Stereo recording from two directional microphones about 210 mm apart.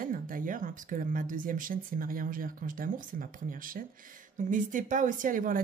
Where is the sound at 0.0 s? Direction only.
40° right (ahead or behind).